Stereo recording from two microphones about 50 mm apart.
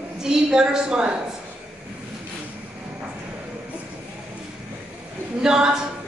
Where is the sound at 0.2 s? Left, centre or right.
Centre.